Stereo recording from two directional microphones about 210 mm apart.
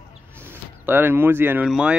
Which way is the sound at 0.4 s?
10° right (ahead or behind).